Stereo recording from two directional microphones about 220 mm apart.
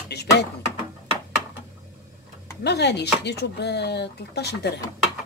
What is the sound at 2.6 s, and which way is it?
Speech, 50° left (ahead or behind).